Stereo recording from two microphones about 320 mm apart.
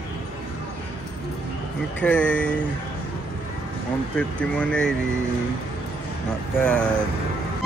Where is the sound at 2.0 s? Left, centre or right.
Centre.